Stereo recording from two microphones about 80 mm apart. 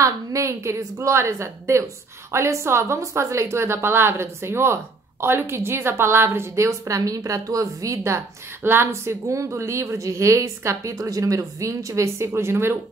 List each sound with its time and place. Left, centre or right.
0.0 s a woman's voice: right